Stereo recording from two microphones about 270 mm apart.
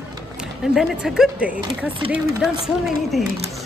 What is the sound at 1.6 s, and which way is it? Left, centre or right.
Speech, centre.